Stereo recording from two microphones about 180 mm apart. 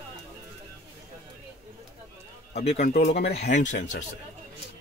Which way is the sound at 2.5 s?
35° left (ahead or behind).